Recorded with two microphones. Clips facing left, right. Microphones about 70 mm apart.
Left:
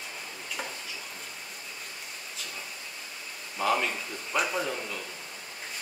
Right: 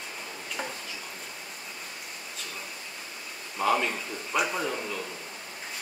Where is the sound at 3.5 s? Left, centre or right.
Centre.